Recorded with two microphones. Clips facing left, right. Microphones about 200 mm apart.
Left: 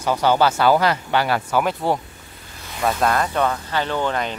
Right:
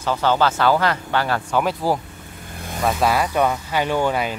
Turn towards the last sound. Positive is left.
turn(degrees=-10)  # may be behind; listen again after turning